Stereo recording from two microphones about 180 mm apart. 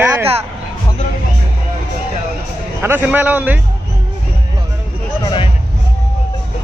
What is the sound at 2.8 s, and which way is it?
Speech, 10° right (ahead or behind).